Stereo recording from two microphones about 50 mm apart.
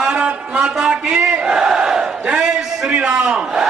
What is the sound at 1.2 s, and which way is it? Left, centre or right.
Battle cry, centre.